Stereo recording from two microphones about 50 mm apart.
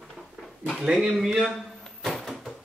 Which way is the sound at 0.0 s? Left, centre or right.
Centre.